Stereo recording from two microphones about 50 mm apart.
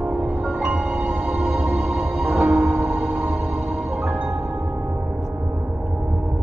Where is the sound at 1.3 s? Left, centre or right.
Centre.